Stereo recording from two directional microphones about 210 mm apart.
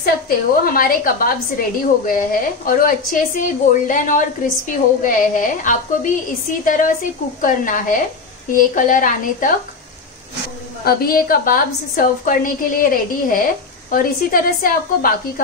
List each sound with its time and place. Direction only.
0.0 s a woman's voice: 45° left (ahead or behind)
10.8 s a woman's voice: 45° left (ahead or behind)